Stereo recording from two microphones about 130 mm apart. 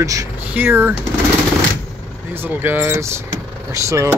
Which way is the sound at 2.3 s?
15° right (ahead or behind).